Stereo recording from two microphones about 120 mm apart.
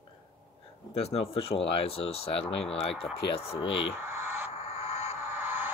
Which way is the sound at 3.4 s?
50° left (ahead or behind).